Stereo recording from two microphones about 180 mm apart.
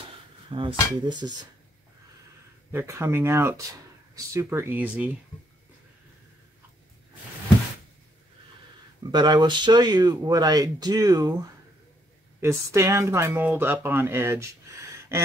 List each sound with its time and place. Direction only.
0.5 s speech: 30° right (ahead or behind)
2.7 s speech: 15° right (ahead or behind)
9.1 s speech: 25° right (ahead or behind)
12.4 s speech: 15° right (ahead or behind)